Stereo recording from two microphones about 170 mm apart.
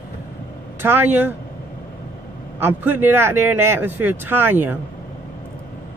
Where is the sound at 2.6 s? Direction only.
10° right (ahead or behind).